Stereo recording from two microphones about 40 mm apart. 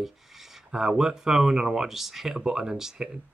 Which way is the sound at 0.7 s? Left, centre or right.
Centre.